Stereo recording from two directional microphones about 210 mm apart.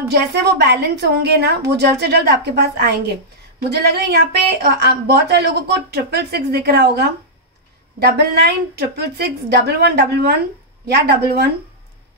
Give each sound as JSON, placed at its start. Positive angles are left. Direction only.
{"t": 0.1, "sound": "a woman's voice", "side_deg": -50}